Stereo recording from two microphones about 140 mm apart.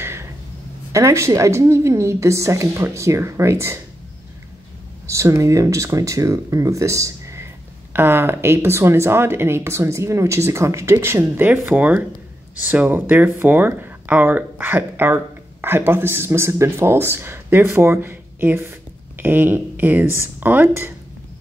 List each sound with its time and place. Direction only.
0.0 s a sound: 20° right (ahead or behind)
0.9 s speech: 20° right (ahead or behind)
5.0 s speech: 20° right (ahead or behind)